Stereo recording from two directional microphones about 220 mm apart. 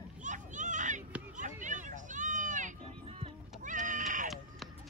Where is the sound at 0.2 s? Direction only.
35° right (ahead or behind).